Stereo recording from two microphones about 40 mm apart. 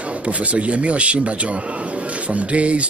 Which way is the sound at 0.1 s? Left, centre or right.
Right.